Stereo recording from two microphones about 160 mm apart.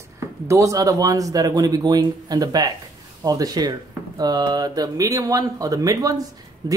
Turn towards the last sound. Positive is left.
turn(degrees=-20)  # may be behind; listen again after turning